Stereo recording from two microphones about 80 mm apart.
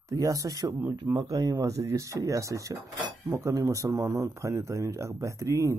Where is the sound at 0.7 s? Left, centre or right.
Right.